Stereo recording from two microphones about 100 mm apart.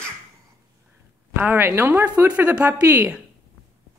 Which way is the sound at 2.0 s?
15° right (ahead or behind).